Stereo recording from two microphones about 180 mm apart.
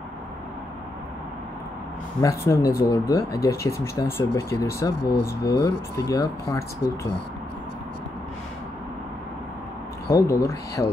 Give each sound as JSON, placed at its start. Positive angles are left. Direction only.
{"t": 2.2, "sound": "speech", "side_deg": 20}
{"t": 10.0, "sound": "speech", "side_deg": 15}